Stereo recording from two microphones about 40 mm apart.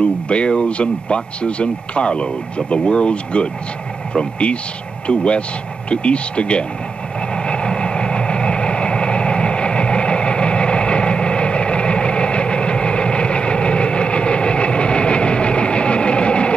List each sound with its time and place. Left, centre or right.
0.0 s speech: left
7.3 s vehicle: left